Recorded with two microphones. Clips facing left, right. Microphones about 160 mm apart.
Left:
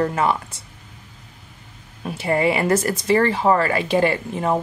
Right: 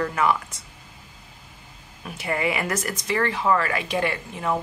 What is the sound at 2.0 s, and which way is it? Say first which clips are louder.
Speech: left 6 dB; 30° left (ahead or behind).